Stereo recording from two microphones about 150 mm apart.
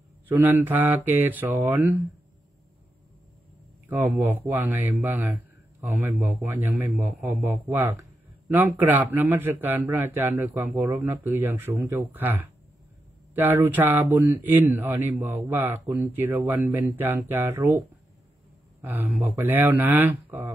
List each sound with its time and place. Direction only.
0.3 s speech: 10° right (ahead or behind)
4.0 s speech: 5° right (ahead or behind)